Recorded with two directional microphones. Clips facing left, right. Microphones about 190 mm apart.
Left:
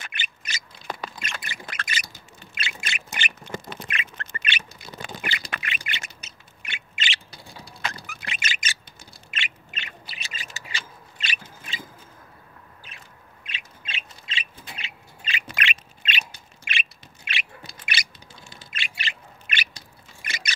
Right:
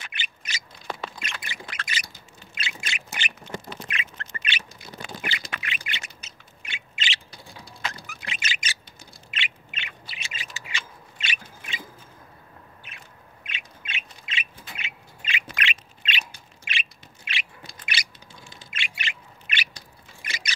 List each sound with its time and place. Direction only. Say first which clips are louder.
0.0 s owl: left 1 dB; 50° left (ahead or behind)
1.2 s squawk: left 1 dB; 45° left (ahead or behind)
6.6 s a sound: left 1 dB; 55° left (ahead or behind)
7.6 s bird: left 2 dB; 60° left (ahead or behind)
9.3 s owl: even; 40° left (ahead or behind)
13.5 s bird: even; 30° left (ahead or behind)
15.6 s squawk: left 1 dB; 50° left (ahead or behind)
16.7 s bird: left 2 dB; 55° left (ahead or behind)
18.7 s bird: even; 35° left (ahead or behind)
20.2 s a sound: left 1 dB; 50° left (ahead or behind)